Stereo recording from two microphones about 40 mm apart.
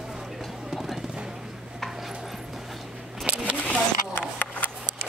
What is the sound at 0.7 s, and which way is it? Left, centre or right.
Music, centre.